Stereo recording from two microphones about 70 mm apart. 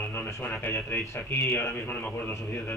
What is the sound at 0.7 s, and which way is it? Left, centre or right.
Music, left.